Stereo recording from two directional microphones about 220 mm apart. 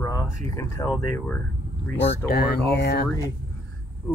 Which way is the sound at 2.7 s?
45° left (ahead or behind).